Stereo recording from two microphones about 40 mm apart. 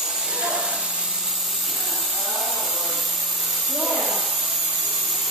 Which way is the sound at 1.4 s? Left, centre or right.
Centre.